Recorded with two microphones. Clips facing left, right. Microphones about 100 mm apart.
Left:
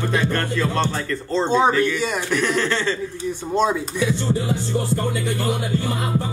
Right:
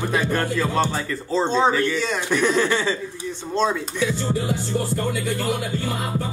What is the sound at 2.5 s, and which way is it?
Speech, 10° right (ahead or behind).